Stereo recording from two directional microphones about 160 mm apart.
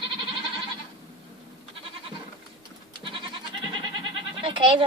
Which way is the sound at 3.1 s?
30° right (ahead or behind).